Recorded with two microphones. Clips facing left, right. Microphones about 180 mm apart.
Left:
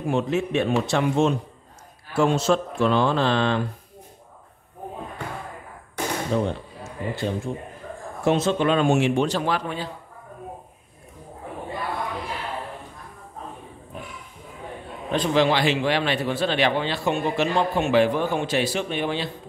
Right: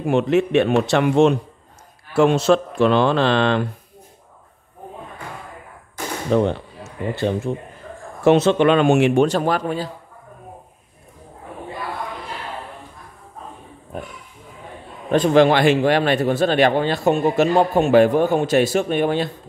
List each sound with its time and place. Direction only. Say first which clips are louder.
0.0 s speech: right 6 dB; 70° right (ahead or behind)
6.3 s speech: right 9 dB; 70° right (ahead or behind); by 9.8 s 45° right (ahead or behind)
15.0 s a man's voice: right 6 dB; 50° right (ahead or behind)